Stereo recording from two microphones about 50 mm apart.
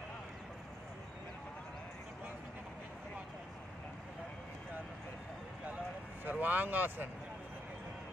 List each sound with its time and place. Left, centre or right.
6.2 s speech: right